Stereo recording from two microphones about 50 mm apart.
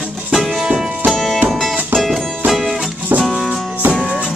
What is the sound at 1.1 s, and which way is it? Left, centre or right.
Music, centre.